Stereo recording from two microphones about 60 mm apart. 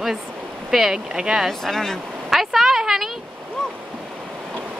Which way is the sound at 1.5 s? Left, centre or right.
Centre.